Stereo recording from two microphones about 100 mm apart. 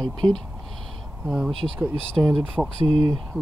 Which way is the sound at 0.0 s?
50° right (ahead or behind).